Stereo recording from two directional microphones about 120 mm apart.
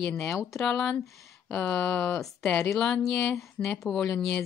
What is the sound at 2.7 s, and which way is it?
Speech, 5° left (ahead or behind).